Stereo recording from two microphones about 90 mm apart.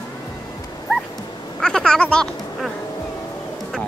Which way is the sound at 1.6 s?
10° left (ahead or behind).